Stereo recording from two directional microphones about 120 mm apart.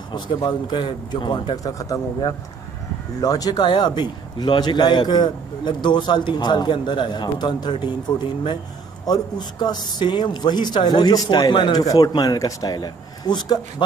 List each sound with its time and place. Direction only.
0.1 s a man's voice: 35° left (ahead or behind)
1.8 s a man's voice: 30° left (ahead or behind)
9.0 s a man's voice: 35° left (ahead or behind)